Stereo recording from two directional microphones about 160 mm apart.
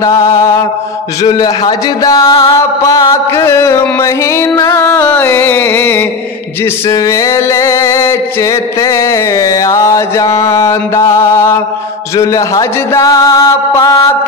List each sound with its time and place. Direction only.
0.2 s music: 15° left (ahead or behind)